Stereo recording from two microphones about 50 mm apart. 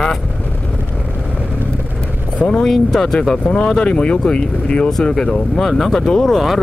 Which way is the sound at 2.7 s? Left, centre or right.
Centre.